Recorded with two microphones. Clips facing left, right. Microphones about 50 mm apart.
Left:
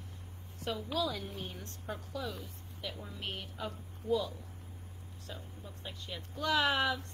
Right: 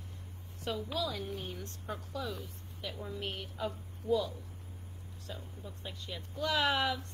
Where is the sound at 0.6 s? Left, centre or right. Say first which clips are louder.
Even; left.